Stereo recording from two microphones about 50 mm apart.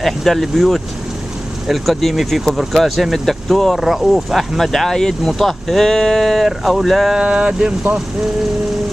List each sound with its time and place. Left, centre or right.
0.0 s speech: centre
7.2 s speech: right